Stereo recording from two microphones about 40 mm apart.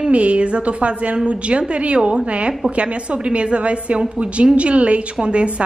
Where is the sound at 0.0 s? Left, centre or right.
Right.